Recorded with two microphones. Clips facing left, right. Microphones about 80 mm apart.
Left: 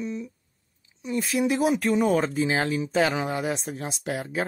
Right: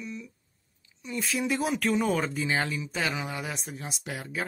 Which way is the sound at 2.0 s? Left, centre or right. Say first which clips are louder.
Left 5 dB; left.